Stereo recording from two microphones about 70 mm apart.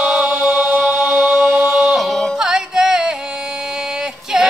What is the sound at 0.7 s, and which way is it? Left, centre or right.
Chant, right.